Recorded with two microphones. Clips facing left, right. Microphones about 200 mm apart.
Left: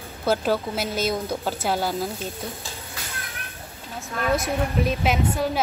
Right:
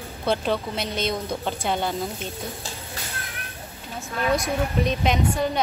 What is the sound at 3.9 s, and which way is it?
A woman's voice, 5° left (ahead or behind).